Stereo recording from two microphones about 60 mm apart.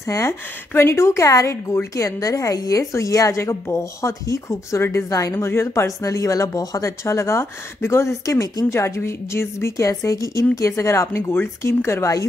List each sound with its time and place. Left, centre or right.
0.0 s a woman's voice: left
6.0 s a woman's voice: left
7.1 s speech: left